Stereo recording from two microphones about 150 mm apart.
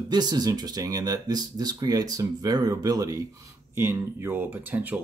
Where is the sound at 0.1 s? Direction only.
25° right (ahead or behind).